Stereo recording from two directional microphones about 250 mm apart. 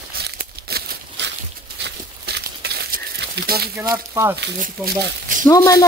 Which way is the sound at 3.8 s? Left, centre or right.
Centre.